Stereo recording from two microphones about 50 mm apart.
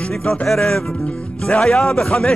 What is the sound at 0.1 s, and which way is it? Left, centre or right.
Music, centre.